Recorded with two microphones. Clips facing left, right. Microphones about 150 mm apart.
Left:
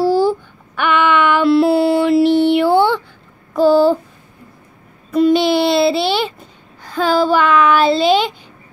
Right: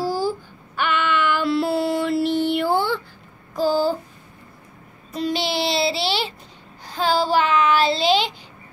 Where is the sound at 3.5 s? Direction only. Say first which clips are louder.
Left 9 dB; 65° left (ahead or behind).